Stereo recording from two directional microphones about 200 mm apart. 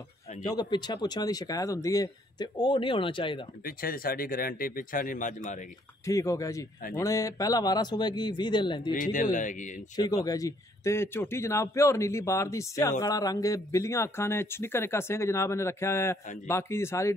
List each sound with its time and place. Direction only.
0.6 s speech: 20° left (ahead or behind)
3.6 s speech: 45° left (ahead or behind)
6.0 s speech: 15° left (ahead or behind)
8.9 s speech: 40° left (ahead or behind)
9.9 s speech: 20° left (ahead or behind)